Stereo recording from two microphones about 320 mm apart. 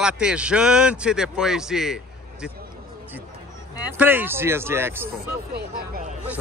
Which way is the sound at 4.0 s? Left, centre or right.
Centre.